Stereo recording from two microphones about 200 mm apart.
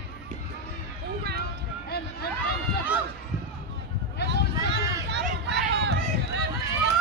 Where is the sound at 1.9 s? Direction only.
50° left (ahead or behind).